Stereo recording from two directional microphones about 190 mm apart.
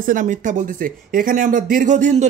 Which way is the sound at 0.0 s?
45° right (ahead or behind).